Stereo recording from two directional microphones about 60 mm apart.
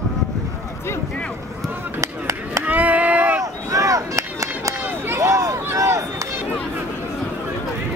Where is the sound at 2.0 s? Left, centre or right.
Right.